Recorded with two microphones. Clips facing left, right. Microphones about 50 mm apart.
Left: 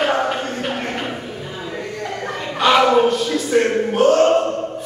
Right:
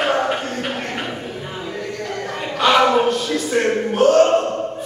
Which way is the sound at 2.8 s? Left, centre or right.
Centre.